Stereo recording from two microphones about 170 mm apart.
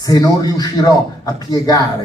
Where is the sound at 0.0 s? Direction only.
25° left (ahead or behind).